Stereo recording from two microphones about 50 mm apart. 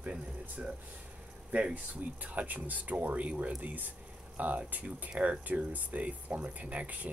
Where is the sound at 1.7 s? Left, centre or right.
Right.